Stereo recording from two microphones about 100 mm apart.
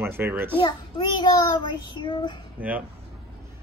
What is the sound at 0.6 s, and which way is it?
Child singing, 50° left (ahead or behind).